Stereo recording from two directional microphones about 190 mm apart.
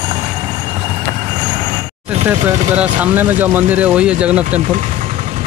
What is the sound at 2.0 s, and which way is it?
Speech, 5° right (ahead or behind).